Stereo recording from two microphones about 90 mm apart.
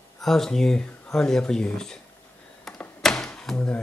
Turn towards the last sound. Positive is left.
turn(degrees=10)  # may be behind; listen again after turning